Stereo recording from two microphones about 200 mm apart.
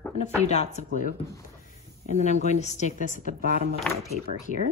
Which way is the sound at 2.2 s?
35° left (ahead or behind).